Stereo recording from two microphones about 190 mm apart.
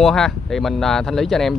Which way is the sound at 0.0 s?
Centre (ahead or behind).